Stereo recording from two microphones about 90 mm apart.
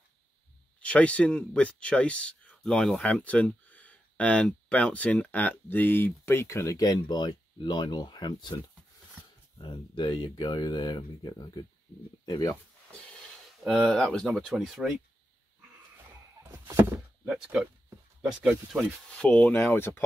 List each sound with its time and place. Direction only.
0.7 s speech: 15° left (ahead or behind); by 8.5 s 55° left (ahead or behind)
9.6 s speech: 60° left (ahead or behind); by 12.5 s 40° left (ahead or behind)
13.8 s speech: 10° left (ahead or behind)
16.4 s door: 35° right (ahead or behind)
18.2 s speech: 5° right (ahead or behind)
19.0 s speech: 10° left (ahead or behind)
19.5 s speech: 25° left (ahead or behind)